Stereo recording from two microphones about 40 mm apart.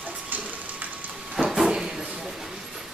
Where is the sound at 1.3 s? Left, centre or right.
Centre.